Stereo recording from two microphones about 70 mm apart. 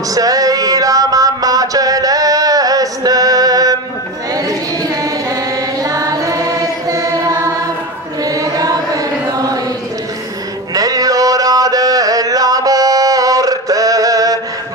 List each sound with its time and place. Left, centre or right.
0.1 s music: right
4.3 s carnatic music: right
8.2 s chant: right
10.7 s chant: right